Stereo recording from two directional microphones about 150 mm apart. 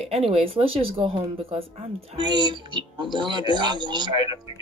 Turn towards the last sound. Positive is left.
turn(degrees=-30)  # may be behind; listen again after turning